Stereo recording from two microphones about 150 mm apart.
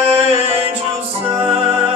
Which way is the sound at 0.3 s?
40° right (ahead or behind).